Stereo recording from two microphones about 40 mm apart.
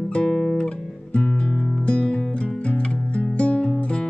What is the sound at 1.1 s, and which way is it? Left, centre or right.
Music, left.